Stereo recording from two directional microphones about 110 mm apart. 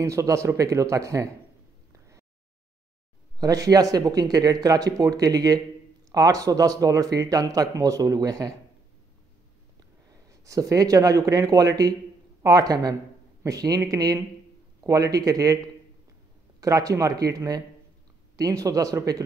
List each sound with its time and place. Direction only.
0.0 s a man's voice: 25° right (ahead or behind)
1.9 s a sound: 30° right (ahead or behind)
3.3 s a man's voice: 35° right (ahead or behind)
10.4 s a man's voice: 30° right (ahead or behind)
16.6 s a man's voice: 30° right (ahead or behind)